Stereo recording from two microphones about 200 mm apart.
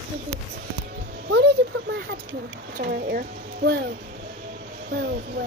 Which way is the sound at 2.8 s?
50° right (ahead or behind).